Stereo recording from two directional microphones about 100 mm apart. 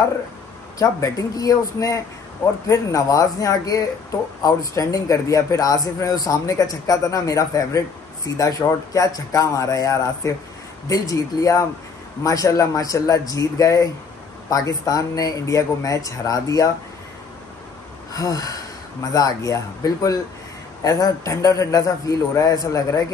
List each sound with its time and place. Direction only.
0.7 s speech: 35° left (ahead or behind)
18.1 s speech: 35° left (ahead or behind)